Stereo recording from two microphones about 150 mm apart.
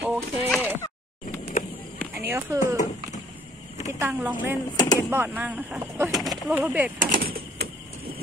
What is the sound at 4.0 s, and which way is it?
Speech, 10° right (ahead or behind).